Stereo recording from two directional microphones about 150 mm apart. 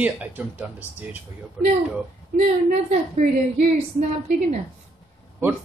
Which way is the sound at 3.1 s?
45° right (ahead or behind).